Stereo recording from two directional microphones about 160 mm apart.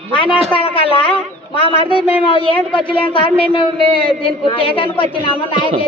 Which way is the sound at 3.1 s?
30° left (ahead or behind).